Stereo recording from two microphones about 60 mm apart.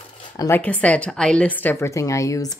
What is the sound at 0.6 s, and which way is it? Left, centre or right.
Speech, left.